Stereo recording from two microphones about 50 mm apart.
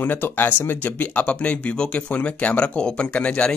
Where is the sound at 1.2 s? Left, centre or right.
Left.